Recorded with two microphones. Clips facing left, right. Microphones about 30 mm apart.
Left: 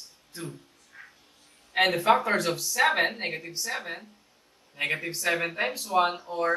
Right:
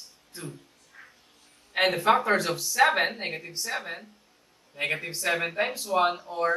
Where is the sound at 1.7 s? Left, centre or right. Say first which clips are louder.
Even; centre.